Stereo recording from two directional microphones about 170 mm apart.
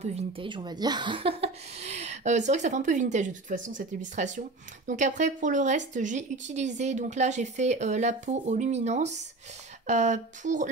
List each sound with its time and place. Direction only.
0.0 s speech: 35° right (ahead or behind)